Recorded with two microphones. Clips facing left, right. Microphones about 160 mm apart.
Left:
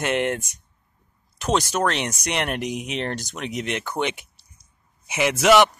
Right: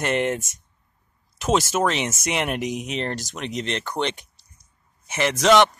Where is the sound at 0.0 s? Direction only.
Centre (ahead or behind).